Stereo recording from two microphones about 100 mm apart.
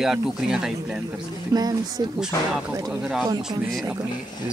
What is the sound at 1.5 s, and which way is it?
Speech, 40° right (ahead or behind).